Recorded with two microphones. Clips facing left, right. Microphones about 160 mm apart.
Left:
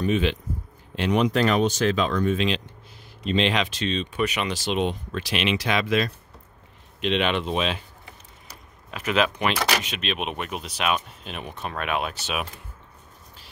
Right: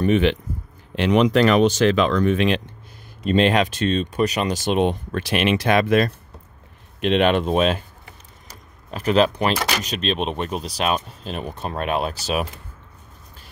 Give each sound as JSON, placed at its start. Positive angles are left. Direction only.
{"t": 0.0, "sound": "speech", "side_deg": -60}
{"t": 0.9, "sound": "speech", "side_deg": -85}
{"t": 3.3, "sound": "speech", "side_deg": -50}
{"t": 8.9, "sound": "speech", "side_deg": -35}